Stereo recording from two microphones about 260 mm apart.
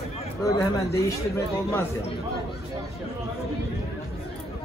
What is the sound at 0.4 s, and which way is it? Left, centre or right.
Speech, centre.